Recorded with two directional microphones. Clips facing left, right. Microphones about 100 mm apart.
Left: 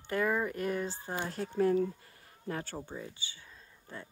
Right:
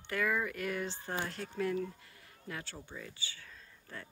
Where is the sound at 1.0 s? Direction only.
20° left (ahead or behind).